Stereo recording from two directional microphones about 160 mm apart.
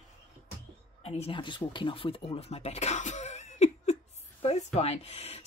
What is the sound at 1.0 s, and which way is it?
Speech, 40° left (ahead or behind).